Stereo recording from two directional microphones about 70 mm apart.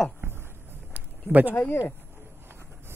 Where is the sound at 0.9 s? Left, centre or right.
Right.